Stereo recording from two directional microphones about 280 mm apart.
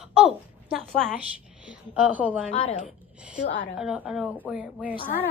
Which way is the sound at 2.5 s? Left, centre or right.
Centre.